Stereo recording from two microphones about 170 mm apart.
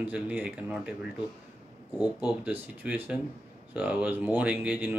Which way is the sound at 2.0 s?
25° left (ahead or behind).